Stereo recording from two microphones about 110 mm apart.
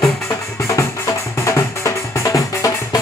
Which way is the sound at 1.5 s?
25° left (ahead or behind).